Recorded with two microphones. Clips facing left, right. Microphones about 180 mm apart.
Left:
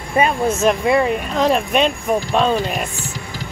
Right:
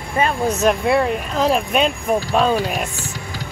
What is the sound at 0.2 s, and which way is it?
Speech, 15° left (ahead or behind).